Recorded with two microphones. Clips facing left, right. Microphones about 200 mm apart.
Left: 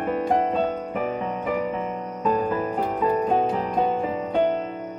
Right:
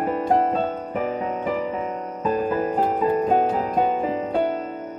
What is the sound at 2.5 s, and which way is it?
Music, 35° right (ahead or behind).